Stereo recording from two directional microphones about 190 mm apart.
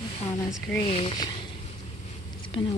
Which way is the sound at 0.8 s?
30° left (ahead or behind).